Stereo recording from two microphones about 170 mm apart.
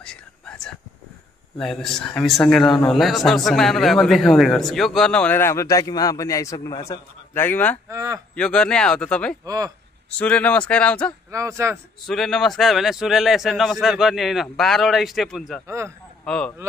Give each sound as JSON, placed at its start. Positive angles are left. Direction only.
{"t": 0.0, "sound": "whispering", "side_deg": 5}
{"t": 1.6, "sound": "a man's voice", "side_deg": 0}
{"t": 7.9, "sound": "speech", "side_deg": -20}
{"t": 8.4, "sound": "a man's voice", "side_deg": 5}
{"t": 9.4, "sound": "speech", "side_deg": -20}
{"t": 10.1, "sound": "speech", "side_deg": 10}
{"t": 11.2, "sound": "speech", "side_deg": -20}
{"t": 12.1, "sound": "a man's voice", "side_deg": 0}
{"t": 15.6, "sound": "speech", "side_deg": -15}
{"t": 16.3, "sound": "a man's voice", "side_deg": 5}